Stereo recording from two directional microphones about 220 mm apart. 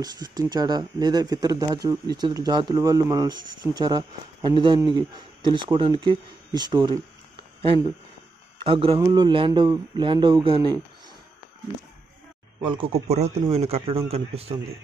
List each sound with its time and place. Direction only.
0.0 s speech: 15° right (ahead or behind)
12.6 s speech: 25° right (ahead or behind)